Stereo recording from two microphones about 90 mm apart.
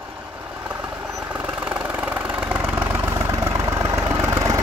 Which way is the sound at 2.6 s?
25° right (ahead or behind).